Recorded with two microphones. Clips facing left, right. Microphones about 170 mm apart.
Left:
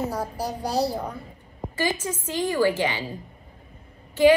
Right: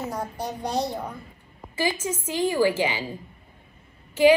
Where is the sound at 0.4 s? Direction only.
35° left (ahead or behind).